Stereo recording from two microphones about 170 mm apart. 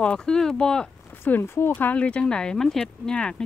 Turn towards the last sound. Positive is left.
turn(degrees=5)  # may be behind; listen again after turning